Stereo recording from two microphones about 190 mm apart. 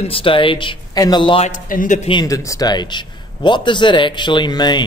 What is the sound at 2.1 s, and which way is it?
A man's voice, 20° left (ahead or behind).